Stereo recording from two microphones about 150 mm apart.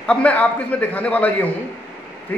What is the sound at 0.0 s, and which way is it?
A man's voice, 10° left (ahead or behind).